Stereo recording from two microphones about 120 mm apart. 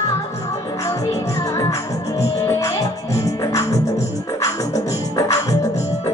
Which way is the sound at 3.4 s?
30° left (ahead or behind).